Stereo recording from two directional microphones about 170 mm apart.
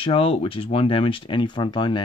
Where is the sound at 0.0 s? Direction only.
30° left (ahead or behind).